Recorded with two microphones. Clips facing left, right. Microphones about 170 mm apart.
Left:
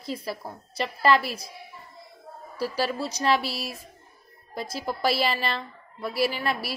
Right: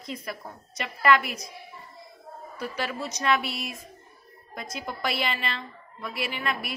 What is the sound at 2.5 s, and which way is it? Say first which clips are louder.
A woman's voice: left 5 dB; 30° left (ahead or behind).